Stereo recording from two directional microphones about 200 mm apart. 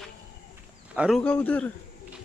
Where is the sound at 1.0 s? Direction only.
Centre (ahead or behind).